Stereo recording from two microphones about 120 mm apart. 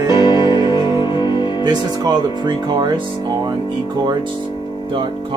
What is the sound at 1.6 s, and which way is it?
Speech, 35° right (ahead or behind).